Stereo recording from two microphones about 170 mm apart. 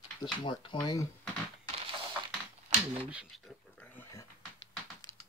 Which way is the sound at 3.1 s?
5° right (ahead or behind).